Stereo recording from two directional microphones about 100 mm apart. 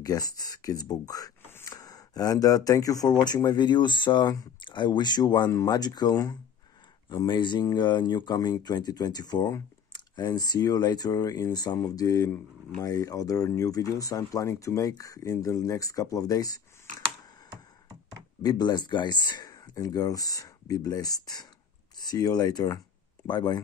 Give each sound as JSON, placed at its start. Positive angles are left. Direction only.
{"t": 0.0, "sound": "speech", "side_deg": 40}
{"t": 18.4, "sound": "speech", "side_deg": 40}